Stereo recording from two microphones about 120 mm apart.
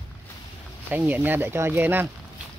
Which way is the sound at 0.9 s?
15° right (ahead or behind).